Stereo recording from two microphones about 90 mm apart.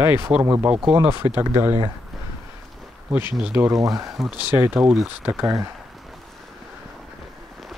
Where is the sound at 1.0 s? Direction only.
25° right (ahead or behind).